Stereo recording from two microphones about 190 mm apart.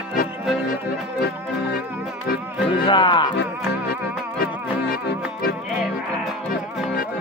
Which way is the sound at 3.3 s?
60° left (ahead or behind).